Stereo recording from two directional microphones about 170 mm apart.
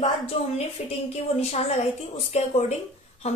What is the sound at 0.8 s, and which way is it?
Speech, 40° left (ahead or behind).